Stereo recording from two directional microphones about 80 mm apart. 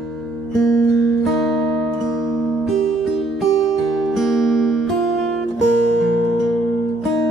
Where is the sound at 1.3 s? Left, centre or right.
Centre.